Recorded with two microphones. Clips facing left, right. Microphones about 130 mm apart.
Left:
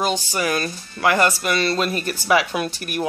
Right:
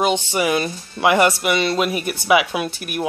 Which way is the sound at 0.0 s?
20° right (ahead or behind).